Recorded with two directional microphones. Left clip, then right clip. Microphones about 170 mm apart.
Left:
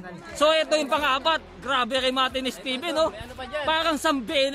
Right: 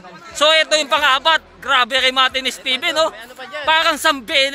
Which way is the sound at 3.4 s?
50° right (ahead or behind).